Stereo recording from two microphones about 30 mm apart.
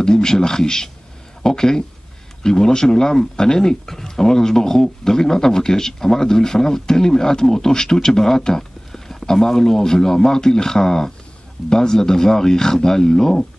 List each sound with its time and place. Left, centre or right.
0.0 s speech: left